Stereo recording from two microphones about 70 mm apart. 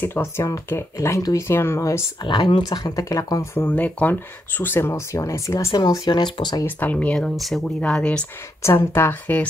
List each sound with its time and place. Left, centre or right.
0.0 s speech: left
2.3 s speech: left
3.5 s speech: left
5.8 s speech: left
6.6 s speech: left
7.2 s speech: centre
7.8 s speech: centre
8.6 s speech: left